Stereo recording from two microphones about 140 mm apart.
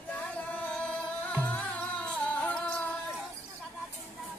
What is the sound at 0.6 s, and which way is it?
Music, 10° left (ahead or behind).